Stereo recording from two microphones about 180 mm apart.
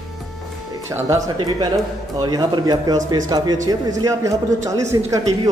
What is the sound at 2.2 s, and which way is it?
A man's voice, 20° right (ahead or behind).